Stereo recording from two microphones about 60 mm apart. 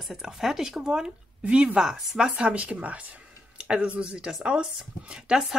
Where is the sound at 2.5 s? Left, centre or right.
Right.